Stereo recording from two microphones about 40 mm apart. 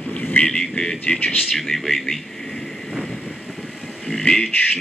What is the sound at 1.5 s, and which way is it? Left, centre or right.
Speech, centre.